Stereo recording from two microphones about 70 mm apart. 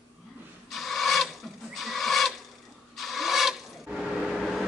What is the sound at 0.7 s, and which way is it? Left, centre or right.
Filing, centre.